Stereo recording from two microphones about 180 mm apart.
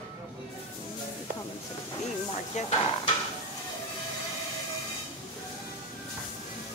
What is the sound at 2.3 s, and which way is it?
Stir, 30° left (ahead or behind).